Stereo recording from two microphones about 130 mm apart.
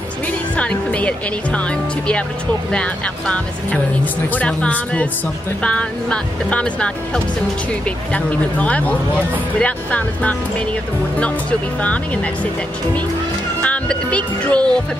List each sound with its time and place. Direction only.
0.6 s speech: 10° left (ahead or behind)
8.1 s speech: 10° left (ahead or behind)
13.6 s music: 10° left (ahead or behind)